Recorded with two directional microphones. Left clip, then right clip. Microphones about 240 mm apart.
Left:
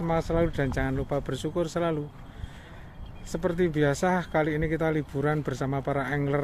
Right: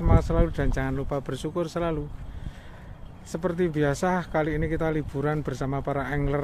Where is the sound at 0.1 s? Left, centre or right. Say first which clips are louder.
Even; centre.